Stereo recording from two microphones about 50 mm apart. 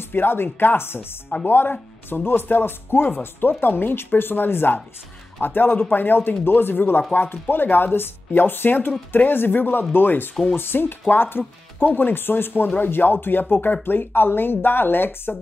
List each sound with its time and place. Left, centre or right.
0.1 s speech: left